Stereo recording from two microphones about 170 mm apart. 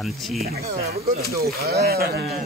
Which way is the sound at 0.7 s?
65° right (ahead or behind).